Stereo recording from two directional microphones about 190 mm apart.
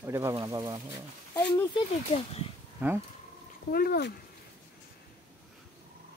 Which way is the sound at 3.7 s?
55° left (ahead or behind).